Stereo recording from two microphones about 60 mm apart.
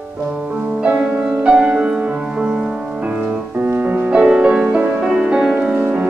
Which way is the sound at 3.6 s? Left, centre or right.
Right.